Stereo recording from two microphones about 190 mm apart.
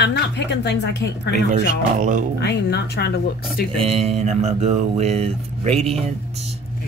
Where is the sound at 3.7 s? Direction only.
30° right (ahead or behind).